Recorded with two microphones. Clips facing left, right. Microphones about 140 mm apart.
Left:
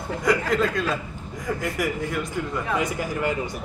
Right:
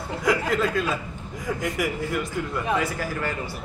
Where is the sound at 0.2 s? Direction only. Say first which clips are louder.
Left 1 dB; centre (ahead or behind).